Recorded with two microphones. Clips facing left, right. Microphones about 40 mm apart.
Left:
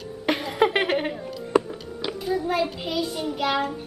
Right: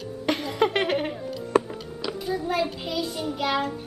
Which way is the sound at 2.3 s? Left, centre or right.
Centre.